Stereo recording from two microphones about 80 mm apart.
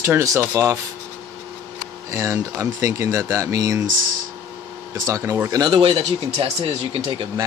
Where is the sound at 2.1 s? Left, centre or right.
Right.